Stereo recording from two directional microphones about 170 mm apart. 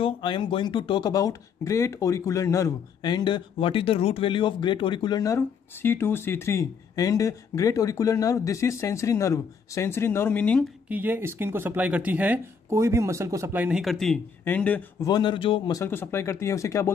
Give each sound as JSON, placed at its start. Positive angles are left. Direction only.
{"t": 0.0, "sound": "speech", "side_deg": 30}
{"t": 10.9, "sound": "speech", "side_deg": -10}
{"t": 15.0, "sound": "speech", "side_deg": 25}